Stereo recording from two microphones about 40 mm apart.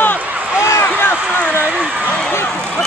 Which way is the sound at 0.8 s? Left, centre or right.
Left.